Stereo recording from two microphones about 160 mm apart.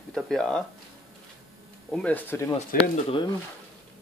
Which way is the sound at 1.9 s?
10° left (ahead or behind).